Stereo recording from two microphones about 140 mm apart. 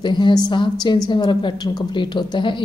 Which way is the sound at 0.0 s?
35° left (ahead or behind).